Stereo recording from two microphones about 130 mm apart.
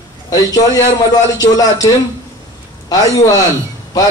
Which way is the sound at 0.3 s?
30° left (ahead or behind).